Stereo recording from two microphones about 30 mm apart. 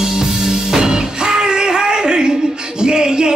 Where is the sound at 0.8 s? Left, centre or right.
Right.